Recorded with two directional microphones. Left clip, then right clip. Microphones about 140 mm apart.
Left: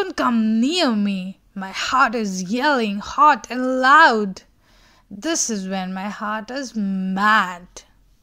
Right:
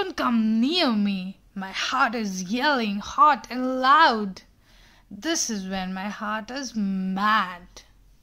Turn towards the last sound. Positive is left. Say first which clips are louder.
# left 5 dB
turn(degrees=55)  # may be behind; listen again after turning